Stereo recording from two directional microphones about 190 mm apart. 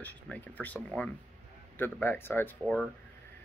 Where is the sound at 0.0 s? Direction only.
10° left (ahead or behind).